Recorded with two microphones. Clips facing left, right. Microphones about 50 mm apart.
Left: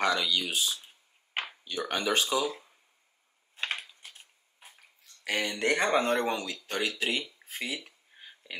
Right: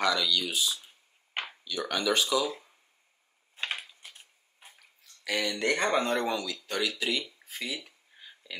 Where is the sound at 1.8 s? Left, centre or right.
Left.